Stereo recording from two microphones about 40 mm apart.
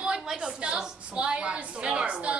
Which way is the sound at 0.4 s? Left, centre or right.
Right.